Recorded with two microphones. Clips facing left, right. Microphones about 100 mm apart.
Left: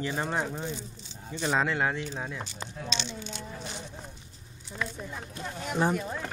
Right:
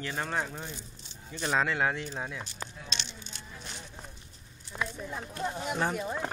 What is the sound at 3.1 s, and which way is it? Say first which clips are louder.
Speech: left 9 dB; 90° left.